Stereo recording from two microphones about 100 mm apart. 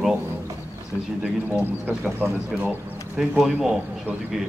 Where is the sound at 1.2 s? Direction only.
15° right (ahead or behind).